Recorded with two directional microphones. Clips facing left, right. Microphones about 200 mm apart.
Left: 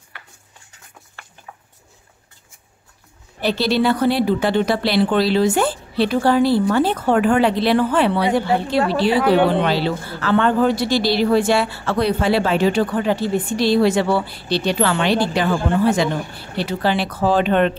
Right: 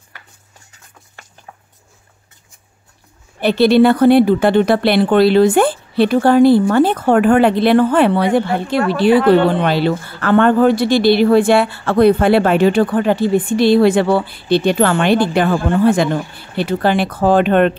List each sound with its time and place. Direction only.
3.3 s speech: 55° right (ahead or behind)